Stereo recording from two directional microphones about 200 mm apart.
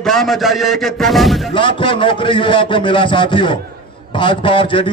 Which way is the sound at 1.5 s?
25° left (ahead or behind).